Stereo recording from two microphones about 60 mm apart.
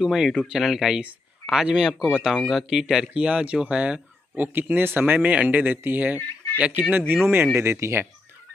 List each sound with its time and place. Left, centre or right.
0.0 s speech: centre
3.1 s speech: right
4.6 s speech: right
6.1 s speech: left
6.6 s speech: right
7.5 s speech: right